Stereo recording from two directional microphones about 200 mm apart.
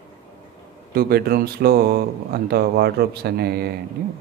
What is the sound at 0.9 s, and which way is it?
Speech, 50° right (ahead or behind).